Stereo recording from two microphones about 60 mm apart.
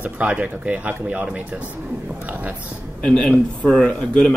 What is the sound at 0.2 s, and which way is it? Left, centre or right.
Speech, right.